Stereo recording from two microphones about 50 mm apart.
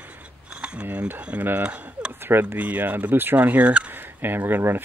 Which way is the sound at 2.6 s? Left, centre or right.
Right.